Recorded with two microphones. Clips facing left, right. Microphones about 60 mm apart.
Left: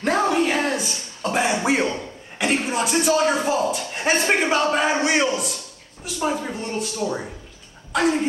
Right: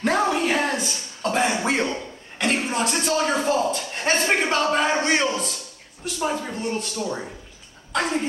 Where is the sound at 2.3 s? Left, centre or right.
Centre.